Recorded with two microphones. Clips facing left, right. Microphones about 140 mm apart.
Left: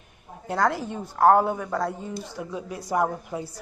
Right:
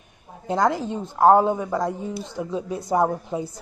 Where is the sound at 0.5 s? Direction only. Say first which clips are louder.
Right 3 dB; 20° right (ahead or behind).